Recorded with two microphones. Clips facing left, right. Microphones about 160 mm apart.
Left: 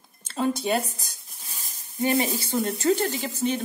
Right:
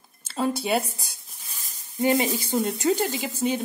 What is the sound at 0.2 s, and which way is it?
Speech, 5° right (ahead or behind).